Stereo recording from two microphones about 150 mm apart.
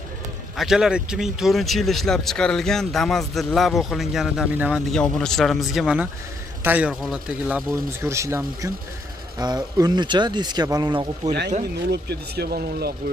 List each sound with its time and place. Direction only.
0.6 s speech: 5° right (ahead or behind)
4.9 s speech: 5° left (ahead or behind)
8.0 s speech: 20° right (ahead or behind)
11.9 s speech: 90° right